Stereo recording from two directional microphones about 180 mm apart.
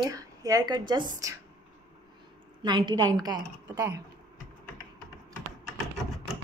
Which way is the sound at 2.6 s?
25° right (ahead or behind).